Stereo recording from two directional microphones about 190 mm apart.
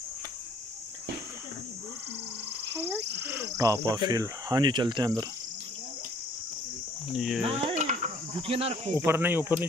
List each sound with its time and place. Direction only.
2.8 s speech: 10° right (ahead or behind)
7.2 s speech: centre (ahead or behind)
7.4 s cricket: 30° right (ahead or behind)
9.0 s speech: 10° right (ahead or behind)